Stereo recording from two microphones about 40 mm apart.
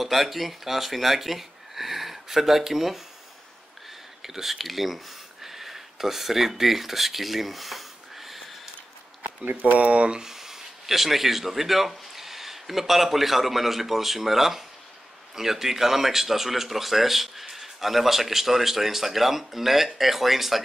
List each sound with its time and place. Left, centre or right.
0.0 s speech: centre
4.2 s speech: centre
9.4 s speech: right
10.2 s speech: centre